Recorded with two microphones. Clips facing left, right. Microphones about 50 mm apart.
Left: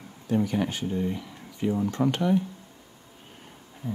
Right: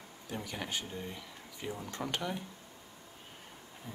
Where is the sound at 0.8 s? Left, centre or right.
Left.